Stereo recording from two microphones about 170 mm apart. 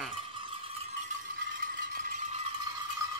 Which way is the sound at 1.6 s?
50° right (ahead or behind).